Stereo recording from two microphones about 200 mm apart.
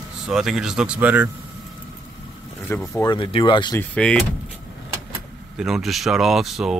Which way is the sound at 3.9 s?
5° left (ahead or behind).